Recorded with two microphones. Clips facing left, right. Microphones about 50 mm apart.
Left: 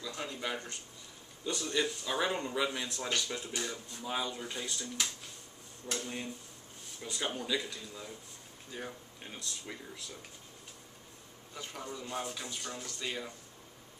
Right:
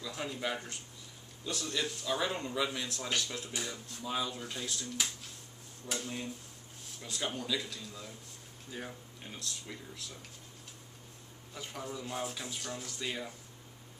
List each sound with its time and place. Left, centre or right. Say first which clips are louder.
0.0 s speech: right 1 dB; centre
9.2 s speech: even; centre
11.5 s speech: right 1 dB; centre